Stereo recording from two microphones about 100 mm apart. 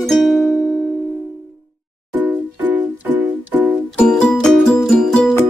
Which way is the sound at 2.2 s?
15° right (ahead or behind).